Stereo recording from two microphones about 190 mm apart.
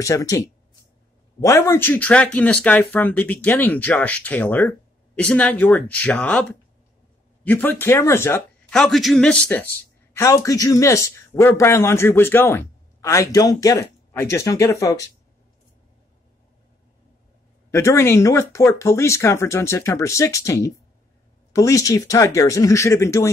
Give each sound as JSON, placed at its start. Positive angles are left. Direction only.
{"t": 0.0, "sound": "speech", "side_deg": 15}
{"t": 8.7, "sound": "speech", "side_deg": 0}
{"t": 17.6, "sound": "speech", "side_deg": 15}